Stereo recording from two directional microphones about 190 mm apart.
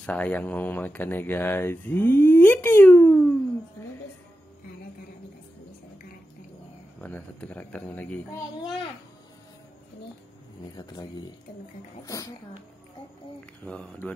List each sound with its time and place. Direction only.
0.0 s speech: 5° left (ahead or behind)
7.0 s speech: 10° left (ahead or behind)
10.8 s speech: 20° left (ahead or behind)
13.7 s speech: 5° left (ahead or behind)